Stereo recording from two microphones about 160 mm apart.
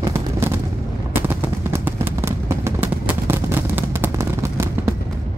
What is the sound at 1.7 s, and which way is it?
Vehicle, 15° right (ahead or behind).